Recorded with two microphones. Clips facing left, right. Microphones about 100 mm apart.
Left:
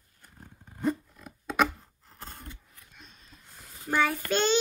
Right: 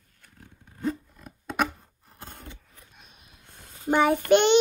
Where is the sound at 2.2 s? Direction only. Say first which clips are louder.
Right 1 dB; 50° right (ahead or behind).